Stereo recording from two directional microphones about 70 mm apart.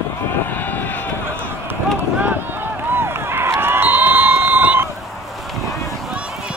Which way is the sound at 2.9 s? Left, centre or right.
Right.